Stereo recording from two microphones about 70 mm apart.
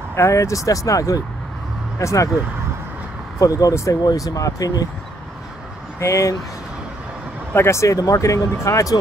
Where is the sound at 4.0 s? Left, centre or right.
Left.